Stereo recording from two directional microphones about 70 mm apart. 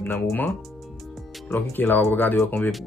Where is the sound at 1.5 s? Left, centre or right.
Left.